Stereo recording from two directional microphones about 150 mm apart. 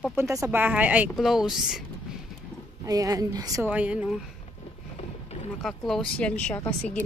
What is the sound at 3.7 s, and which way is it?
Speech, 10° right (ahead or behind).